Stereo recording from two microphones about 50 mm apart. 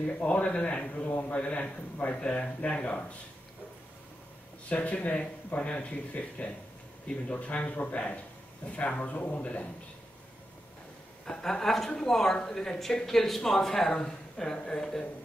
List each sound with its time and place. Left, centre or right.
0.0 s a man's voice: left
4.6 s a man's voice: left
11.2 s speech: centre